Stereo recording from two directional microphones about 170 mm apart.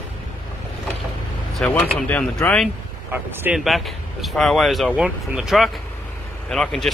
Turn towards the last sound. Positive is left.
turn(degrees=5)  # may be behind; listen again after turning